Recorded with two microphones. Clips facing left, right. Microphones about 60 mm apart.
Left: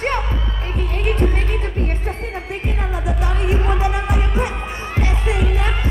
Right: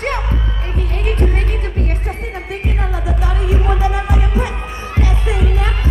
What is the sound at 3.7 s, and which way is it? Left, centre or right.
Music, left.